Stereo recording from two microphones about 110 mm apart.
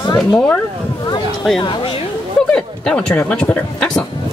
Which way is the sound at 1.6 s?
50° left (ahead or behind).